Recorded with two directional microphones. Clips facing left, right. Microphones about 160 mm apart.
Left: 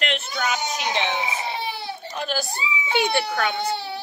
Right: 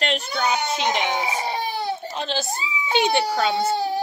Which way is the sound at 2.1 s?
25° right (ahead or behind).